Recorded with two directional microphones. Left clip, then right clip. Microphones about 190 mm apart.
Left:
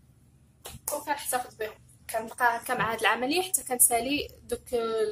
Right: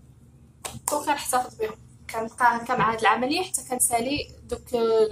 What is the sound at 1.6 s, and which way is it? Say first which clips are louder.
A woman's voice: right 6 dB; 40° left (ahead or behind).